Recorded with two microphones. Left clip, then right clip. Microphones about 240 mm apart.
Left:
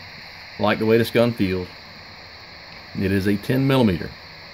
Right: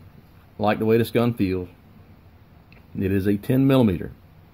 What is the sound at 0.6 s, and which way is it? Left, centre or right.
Speech, centre.